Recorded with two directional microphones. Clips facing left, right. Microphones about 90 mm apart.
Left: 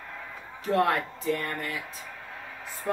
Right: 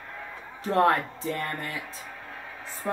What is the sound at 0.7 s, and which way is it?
A man's voice, 30° right (ahead or behind).